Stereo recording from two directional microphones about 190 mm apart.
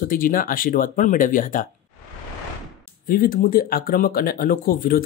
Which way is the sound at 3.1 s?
50° left (ahead or behind).